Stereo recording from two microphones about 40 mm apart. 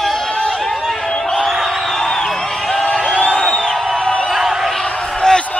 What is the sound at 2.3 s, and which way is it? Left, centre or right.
Music, centre.